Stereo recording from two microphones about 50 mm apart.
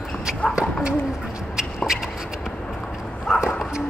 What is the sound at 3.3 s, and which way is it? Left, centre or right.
Dog, centre.